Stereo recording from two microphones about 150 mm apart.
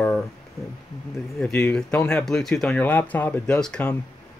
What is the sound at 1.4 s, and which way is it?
Speech, 5° left (ahead or behind).